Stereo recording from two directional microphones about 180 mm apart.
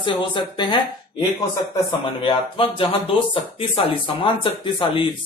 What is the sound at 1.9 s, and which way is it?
Speech, 30° left (ahead or behind).